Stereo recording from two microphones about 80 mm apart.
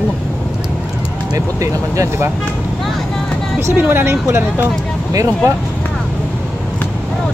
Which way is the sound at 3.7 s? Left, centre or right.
Right.